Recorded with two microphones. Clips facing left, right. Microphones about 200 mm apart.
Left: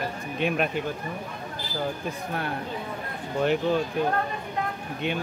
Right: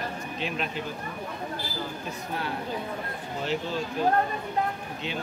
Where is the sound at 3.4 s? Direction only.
55° left (ahead or behind).